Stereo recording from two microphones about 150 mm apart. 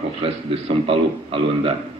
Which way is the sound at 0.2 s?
40° right (ahead or behind).